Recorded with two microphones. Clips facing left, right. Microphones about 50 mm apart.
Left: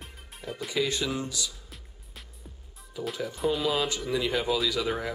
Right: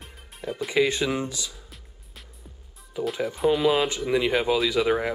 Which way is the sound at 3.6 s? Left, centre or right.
Right.